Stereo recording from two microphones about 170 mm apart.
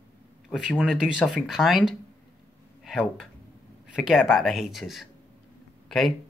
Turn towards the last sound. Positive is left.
turn(degrees=0)  # may be behind; listen again after turning